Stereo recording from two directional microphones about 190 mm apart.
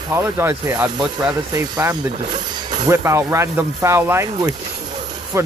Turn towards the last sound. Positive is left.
turn(degrees=-15)  # may be behind; listen again after turning